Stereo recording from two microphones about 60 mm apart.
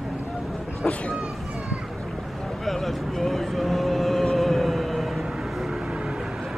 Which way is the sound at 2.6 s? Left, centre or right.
Centre.